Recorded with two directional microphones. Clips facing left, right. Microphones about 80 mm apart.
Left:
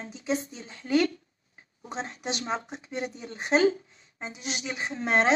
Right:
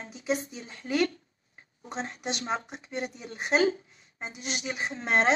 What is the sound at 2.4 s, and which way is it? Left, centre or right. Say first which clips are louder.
Speech: even; left.